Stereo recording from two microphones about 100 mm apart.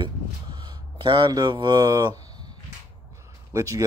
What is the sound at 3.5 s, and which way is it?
Speech, 35° right (ahead or behind).